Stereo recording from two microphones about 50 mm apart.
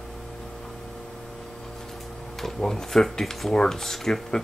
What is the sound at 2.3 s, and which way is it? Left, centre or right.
Speech, centre.